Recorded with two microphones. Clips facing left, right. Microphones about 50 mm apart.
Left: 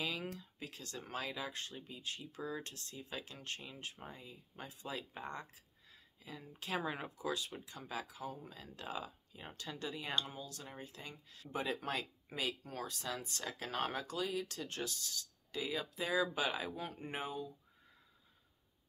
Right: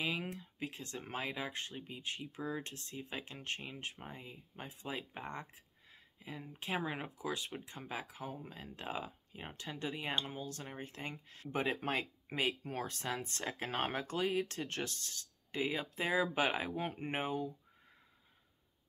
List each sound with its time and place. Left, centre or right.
0.0 s speech: right
7.2 s speech: right